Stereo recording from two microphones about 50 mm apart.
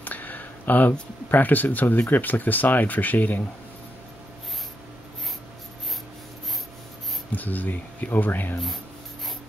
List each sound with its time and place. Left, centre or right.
0.0 s a sound: left
1.3 s speech: left
7.3 s speech: left